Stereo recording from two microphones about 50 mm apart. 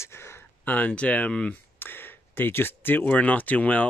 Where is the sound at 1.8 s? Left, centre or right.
Left.